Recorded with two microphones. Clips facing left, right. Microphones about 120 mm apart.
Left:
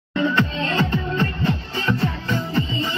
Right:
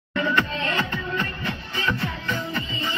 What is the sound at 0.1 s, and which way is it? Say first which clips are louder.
Music: left 3 dB; 25° left (ahead or behind).